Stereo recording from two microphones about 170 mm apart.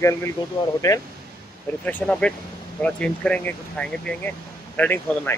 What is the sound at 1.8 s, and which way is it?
Speech, 10° left (ahead or behind).